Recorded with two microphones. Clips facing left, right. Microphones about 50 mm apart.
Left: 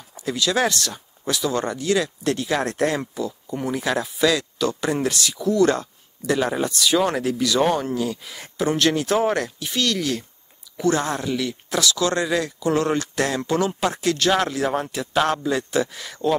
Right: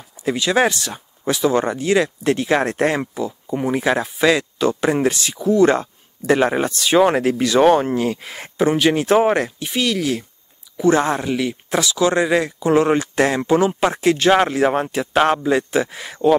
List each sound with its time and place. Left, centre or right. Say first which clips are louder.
0.2 s speech: right 4 dB; right
8.9 s speech: right 5 dB; right; by 10.2 s centre
10.8 s speech: right 5 dB; right